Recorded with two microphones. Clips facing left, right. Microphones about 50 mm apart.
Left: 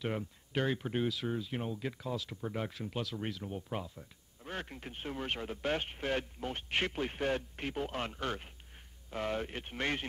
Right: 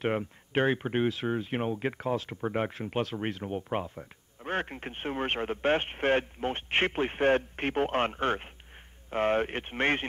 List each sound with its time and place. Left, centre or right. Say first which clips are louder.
0.0 s speech: right 7 dB; right